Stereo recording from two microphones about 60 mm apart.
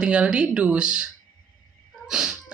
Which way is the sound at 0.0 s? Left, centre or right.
Centre.